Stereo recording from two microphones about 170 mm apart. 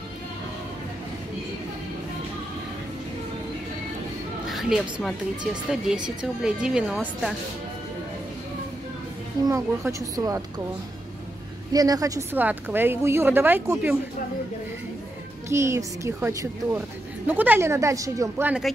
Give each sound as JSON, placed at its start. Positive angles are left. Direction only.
{"t": 4.5, "sound": "speech", "side_deg": 0}
{"t": 9.5, "sound": "a woman's voice", "side_deg": -20}
{"t": 11.7, "sound": "speech", "side_deg": -20}
{"t": 15.5, "sound": "speech", "side_deg": -15}